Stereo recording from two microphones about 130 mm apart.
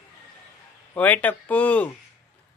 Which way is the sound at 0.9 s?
10° left (ahead or behind).